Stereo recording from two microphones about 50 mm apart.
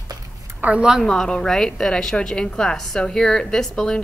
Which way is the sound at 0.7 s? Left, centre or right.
Centre.